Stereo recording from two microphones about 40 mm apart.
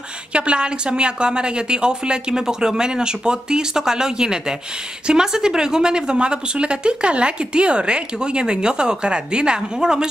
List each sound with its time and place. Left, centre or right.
0.3 s speech: right